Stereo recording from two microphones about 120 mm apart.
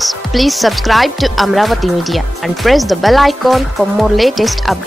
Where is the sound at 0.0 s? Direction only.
Centre (ahead or behind).